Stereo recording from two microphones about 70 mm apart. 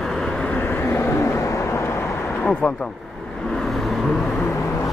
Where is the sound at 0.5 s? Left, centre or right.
Left.